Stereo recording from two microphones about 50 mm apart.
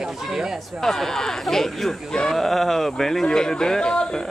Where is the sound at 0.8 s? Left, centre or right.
Centre.